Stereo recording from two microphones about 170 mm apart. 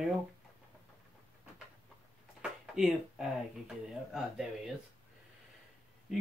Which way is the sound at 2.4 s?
5° right (ahead or behind).